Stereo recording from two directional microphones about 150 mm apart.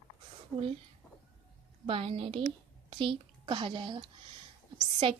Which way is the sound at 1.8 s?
40° right (ahead or behind).